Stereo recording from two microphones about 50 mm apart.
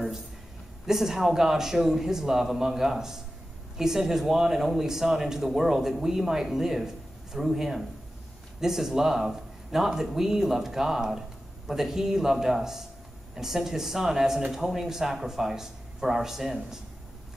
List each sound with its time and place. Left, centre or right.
0.8 s speech: centre